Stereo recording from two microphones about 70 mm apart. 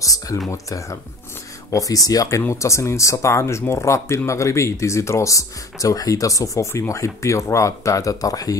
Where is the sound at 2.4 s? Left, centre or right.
Left.